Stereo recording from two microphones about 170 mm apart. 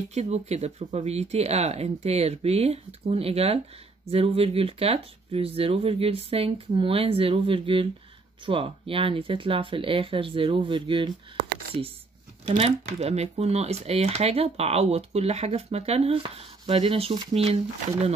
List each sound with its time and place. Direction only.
0.1 s speech: 40° right (ahead or behind)
12.4 s speech: 35° right (ahead or behind)